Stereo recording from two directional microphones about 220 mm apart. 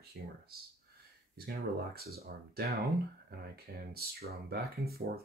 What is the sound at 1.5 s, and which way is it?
Speech, 45° right (ahead or behind).